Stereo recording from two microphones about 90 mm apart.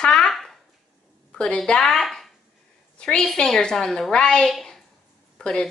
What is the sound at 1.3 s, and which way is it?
A woman's voice, 10° left (ahead or behind).